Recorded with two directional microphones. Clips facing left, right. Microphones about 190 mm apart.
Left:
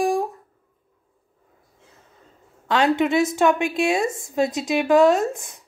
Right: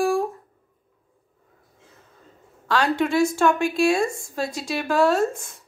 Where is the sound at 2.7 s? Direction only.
20° left (ahead or behind).